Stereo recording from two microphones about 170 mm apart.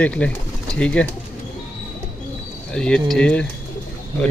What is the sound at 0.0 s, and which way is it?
Speech, 10° left (ahead or behind).